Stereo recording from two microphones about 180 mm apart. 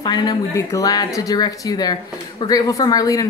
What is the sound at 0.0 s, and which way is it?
Speech, 25° left (ahead or behind).